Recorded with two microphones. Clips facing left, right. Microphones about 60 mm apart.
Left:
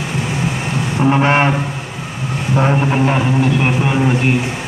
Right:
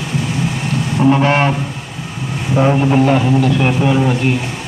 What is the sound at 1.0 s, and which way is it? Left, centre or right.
Speech, left.